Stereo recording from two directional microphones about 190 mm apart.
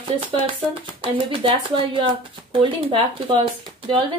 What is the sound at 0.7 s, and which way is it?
A woman's voice, 25° right (ahead or behind).